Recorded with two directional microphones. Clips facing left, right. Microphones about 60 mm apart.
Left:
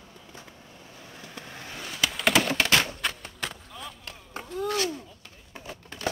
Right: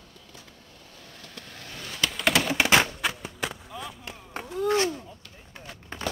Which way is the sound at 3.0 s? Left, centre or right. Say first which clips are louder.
Right 2 dB; centre.